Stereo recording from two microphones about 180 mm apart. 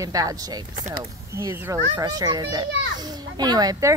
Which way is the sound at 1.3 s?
15° right (ahead or behind).